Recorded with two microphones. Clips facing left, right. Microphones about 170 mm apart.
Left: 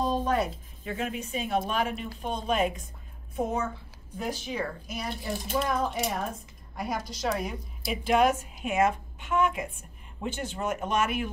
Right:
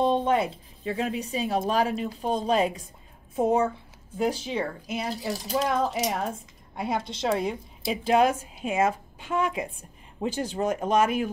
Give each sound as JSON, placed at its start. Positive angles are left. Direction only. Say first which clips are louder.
{"t": 0.0, "sound": "a woman's voice", "louder": "right 4 dB", "side_deg": -25}